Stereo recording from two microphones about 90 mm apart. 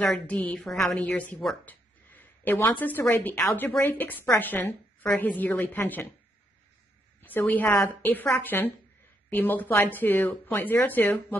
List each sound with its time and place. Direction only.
0.0 s a woman's voice: 15° left (ahead or behind)
0.9 s a woman's voice: 15° left (ahead or behind)
1.7 s a sound: 20° left (ahead or behind)
2.7 s a woman's voice: 20° left (ahead or behind)
7.2 s a woman's voice: 20° left (ahead or behind)